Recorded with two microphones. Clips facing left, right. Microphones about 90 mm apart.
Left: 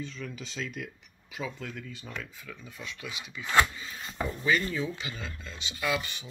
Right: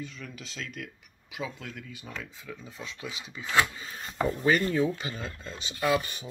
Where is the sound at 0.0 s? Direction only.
Centre (ahead or behind).